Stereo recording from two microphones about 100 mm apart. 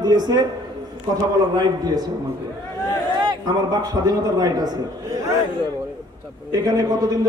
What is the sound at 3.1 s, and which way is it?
A man's voice, 45° right (ahead or behind).